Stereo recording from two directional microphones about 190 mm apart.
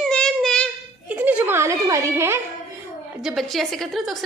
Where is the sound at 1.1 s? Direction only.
10° right (ahead or behind).